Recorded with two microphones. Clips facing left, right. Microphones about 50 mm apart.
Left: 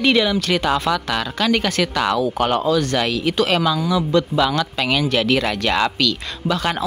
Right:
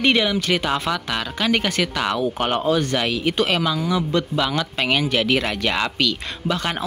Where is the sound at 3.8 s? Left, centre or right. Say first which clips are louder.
Left 3 dB; right.